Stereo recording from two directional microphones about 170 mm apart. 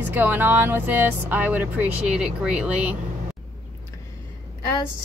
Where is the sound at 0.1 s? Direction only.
10° right (ahead or behind).